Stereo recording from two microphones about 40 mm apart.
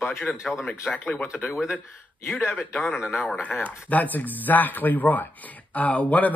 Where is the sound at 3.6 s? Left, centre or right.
Left.